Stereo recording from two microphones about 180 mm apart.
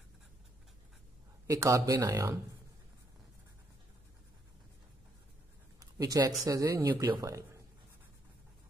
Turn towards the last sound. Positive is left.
turn(degrees=-15)  # may be behind; listen again after turning